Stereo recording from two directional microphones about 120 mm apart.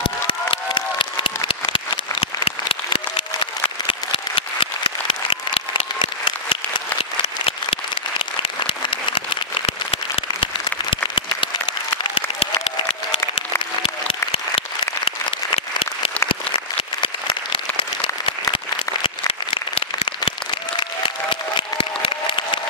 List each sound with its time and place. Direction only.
0.0 s applause: 45° left (ahead or behind)
8.4 s applause: 50° left (ahead or behind)